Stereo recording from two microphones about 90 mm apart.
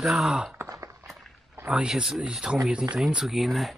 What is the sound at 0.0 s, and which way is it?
Speech, 5° right (ahead or behind).